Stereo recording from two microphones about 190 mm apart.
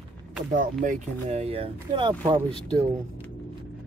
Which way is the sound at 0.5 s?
40° right (ahead or behind).